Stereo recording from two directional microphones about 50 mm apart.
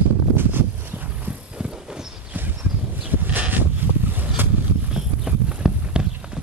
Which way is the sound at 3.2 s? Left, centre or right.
Right.